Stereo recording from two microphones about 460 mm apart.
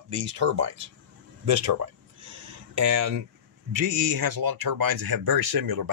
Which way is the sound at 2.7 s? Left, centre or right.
Right.